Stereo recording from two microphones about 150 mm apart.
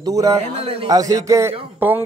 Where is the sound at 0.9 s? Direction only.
25° right (ahead or behind).